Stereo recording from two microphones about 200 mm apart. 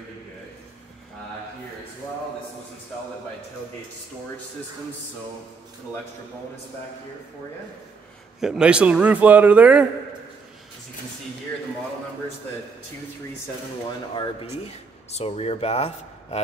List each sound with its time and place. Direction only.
8.4 s a man's voice: 5° right (ahead or behind)
14.1 s speech: 30° left (ahead or behind)